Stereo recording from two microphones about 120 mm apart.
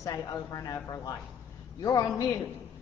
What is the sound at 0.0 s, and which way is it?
A woman's voice, 30° left (ahead or behind).